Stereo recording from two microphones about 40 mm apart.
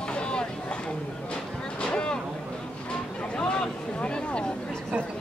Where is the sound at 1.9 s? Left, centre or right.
Left.